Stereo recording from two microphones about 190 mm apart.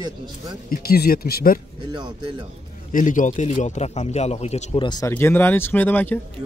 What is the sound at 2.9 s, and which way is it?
A man's voice, 45° left (ahead or behind).